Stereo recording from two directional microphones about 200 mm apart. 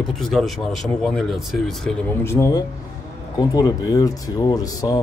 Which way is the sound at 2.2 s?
15° left (ahead or behind).